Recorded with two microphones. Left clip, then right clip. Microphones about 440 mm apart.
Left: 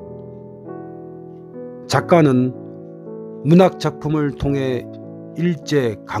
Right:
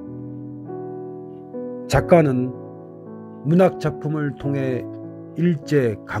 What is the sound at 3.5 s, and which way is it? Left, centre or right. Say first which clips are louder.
Speech: left 3 dB; centre.